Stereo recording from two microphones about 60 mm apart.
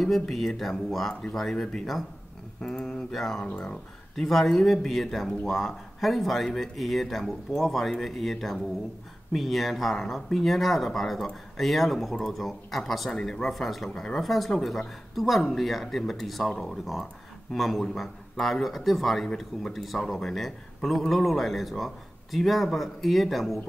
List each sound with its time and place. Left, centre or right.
0.0 s speech: centre
3.4 s speech: centre
4.1 s speech: centre